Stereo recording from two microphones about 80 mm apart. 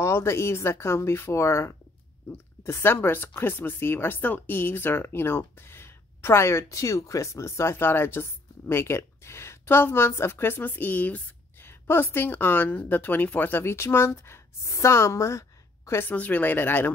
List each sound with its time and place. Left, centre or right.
0.0 s speech: left
16.1 s speech: left